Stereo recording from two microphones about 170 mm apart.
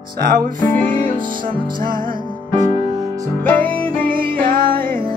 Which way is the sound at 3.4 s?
10° left (ahead or behind).